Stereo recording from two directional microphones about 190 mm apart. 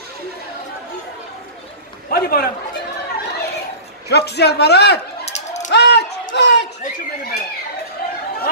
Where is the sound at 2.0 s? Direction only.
50° left (ahead or behind).